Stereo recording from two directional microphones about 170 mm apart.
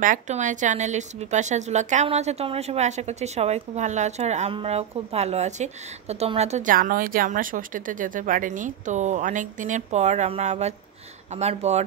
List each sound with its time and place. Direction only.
0.0 s a woman's voice: 50° right (ahead or behind)